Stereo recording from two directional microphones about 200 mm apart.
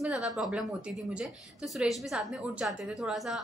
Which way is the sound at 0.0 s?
5° right (ahead or behind).